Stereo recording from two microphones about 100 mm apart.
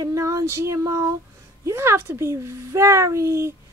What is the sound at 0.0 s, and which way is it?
Child singing, 35° right (ahead or behind).